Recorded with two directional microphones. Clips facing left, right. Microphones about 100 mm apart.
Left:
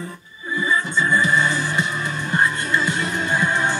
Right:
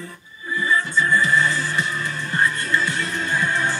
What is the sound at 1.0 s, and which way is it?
Music, 20° left (ahead or behind).